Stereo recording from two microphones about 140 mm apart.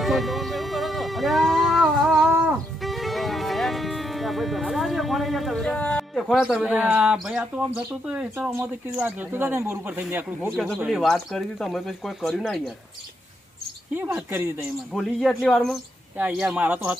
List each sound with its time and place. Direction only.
0.0 s a sound: centre (ahead or behind)
2.8 s music: centre (ahead or behind)
8.5 s speech: 10° right (ahead or behind)
10.9 s speech: 5° right (ahead or behind)
13.9 s speech: 15° right (ahead or behind)
14.9 s speech: centre (ahead or behind)